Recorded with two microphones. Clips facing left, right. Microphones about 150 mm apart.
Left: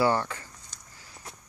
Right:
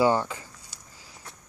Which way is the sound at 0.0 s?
15° right (ahead or behind).